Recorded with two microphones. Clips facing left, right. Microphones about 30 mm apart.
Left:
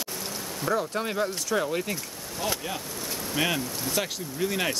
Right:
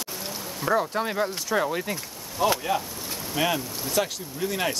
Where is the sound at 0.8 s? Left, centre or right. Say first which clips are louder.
Right 2 dB; centre.